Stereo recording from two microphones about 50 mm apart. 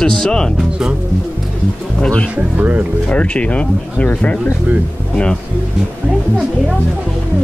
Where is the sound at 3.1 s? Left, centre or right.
Left.